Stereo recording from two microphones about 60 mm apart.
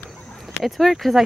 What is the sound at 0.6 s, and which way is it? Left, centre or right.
Speech, centre.